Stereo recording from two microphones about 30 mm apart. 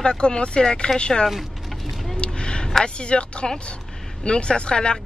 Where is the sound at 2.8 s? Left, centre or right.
Left.